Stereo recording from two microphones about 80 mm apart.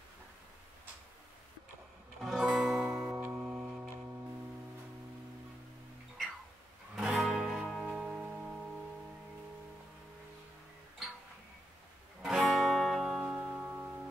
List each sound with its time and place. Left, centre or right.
2.2 s music: centre
7.0 s music: centre
12.2 s music: centre
13.2 s music: centre